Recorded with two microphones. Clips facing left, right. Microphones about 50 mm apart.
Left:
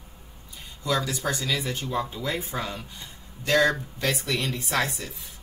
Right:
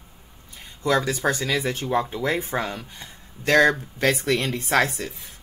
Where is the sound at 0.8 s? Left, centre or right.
Right.